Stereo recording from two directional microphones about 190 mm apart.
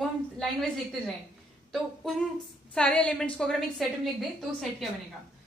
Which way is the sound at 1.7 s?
Centre (ahead or behind).